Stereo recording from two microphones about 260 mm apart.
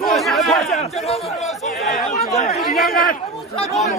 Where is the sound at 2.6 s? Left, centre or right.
Centre.